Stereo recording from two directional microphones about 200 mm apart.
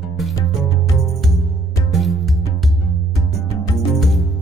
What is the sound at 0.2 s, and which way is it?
Music, centre (ahead or behind).